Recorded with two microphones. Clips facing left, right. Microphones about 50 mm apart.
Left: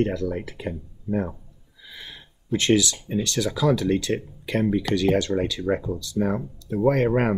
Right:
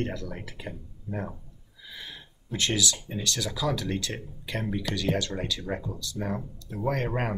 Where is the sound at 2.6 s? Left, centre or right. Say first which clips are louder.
Left 7 dB; left.